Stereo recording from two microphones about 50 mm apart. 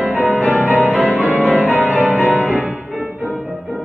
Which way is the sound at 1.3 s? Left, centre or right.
Left.